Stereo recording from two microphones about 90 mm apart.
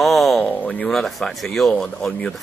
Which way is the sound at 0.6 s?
15° left (ahead or behind).